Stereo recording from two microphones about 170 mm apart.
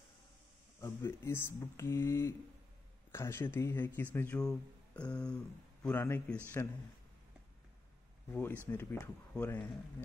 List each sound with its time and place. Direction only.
0.7 s speech: 15° left (ahead or behind)
8.3 s speech: 10° left (ahead or behind)